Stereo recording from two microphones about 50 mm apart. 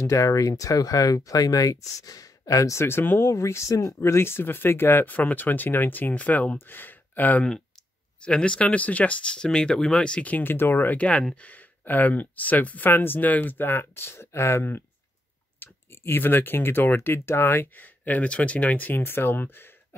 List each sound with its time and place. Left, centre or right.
0.0 s speech: left
2.4 s speech: left
2.9 s speech: left
3.3 s speech: left
5.0 s speech: left
6.6 s speech: left
8.2 s speech: left
9.3 s speech: centre
10.4 s speech: left
11.0 s speech: left
12.9 s speech: left
15.6 s speech: left
17.7 s speech: left
18.9 s speech: left